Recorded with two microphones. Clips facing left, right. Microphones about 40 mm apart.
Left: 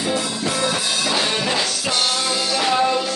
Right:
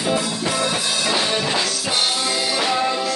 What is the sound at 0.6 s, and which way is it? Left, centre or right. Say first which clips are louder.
Music: left 1 dB; centre.